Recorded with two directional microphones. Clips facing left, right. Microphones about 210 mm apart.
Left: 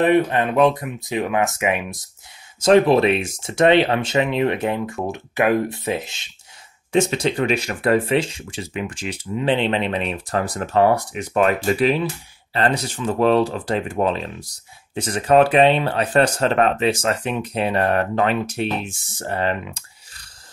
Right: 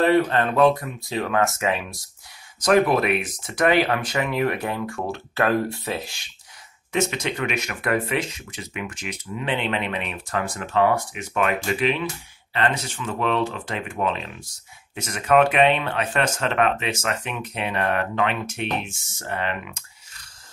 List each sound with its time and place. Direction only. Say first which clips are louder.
0.0 s speech: left 2 dB; 15° left (ahead or behind)
2.6 s speech: left 5 dB; 25° left (ahead or behind)